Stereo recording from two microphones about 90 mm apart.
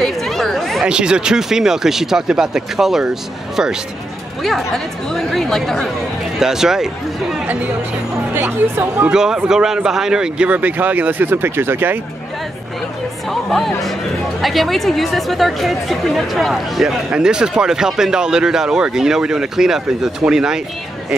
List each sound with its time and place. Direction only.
0.0 s chatter: 5° left (ahead or behind)
0.8 s speech: 10° right (ahead or behind)
4.4 s speech: centre (ahead or behind)
8.4 s speech: 25° right (ahead or behind)
9.1 s speech: 5° right (ahead or behind); by 12.0 s 25° right (ahead or behind)
13.3 s speech: centre (ahead or behind)